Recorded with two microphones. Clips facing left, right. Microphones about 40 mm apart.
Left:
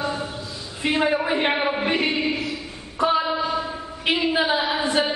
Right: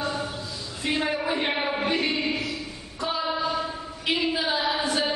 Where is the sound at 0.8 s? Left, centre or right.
Centre.